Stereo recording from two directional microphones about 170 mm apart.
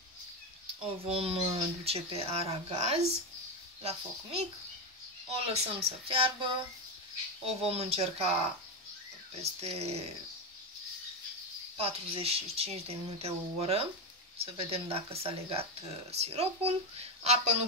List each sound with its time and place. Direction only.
1.0 s speech: 35° right (ahead or behind)
11.7 s a woman's voice: 35° right (ahead or behind)